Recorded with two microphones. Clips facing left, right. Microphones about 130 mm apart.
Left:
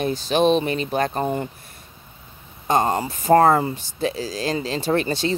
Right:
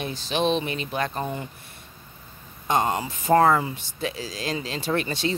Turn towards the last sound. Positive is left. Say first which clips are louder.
# left 4 dB
turn(degrees=35)  # may be behind; listen again after turning